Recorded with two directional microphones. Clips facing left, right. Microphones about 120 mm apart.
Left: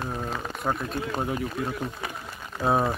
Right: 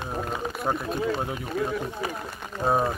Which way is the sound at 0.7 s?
15° right (ahead or behind).